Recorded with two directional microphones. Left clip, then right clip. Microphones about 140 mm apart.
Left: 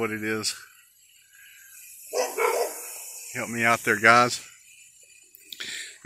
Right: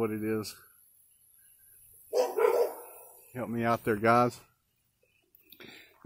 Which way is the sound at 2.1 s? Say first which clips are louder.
Left 1 dB; 80° right.